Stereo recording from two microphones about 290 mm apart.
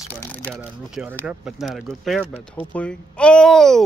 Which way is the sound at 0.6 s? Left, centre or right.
Centre.